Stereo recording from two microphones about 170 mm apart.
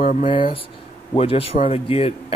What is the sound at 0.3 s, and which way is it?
Speech, 30° left (ahead or behind).